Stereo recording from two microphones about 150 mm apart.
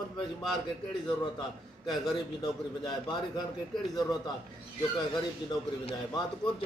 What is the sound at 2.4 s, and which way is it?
A man's voice, 30° left (ahead or behind).